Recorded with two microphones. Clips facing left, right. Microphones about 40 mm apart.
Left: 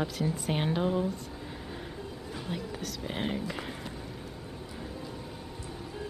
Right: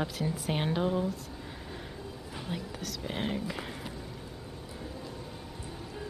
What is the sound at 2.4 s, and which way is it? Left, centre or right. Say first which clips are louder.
Speech: left 1 dB; centre.